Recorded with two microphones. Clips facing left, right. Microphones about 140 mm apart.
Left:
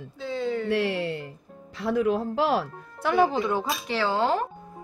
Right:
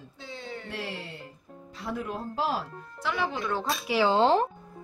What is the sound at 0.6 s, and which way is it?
Speech, 70° left (ahead or behind).